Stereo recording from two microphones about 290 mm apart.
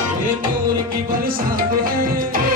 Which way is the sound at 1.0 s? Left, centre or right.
Right.